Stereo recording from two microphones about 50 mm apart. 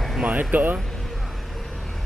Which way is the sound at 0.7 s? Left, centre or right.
Centre.